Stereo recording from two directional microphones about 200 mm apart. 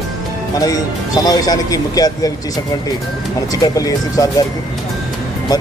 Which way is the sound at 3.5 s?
15° left (ahead or behind).